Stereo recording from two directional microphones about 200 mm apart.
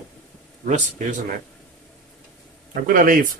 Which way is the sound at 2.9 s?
45° right (ahead or behind).